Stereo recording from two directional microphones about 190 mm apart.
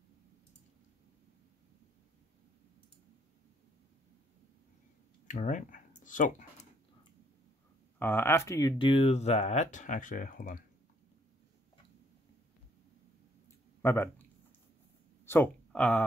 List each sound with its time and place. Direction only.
5.3 s speech: 40° left (ahead or behind)
8.0 s speech: 10° left (ahead or behind); by 10.6 s 45° left (ahead or behind)
13.8 s speech: 10° left (ahead or behind)
15.2 s speech: 10° left (ahead or behind)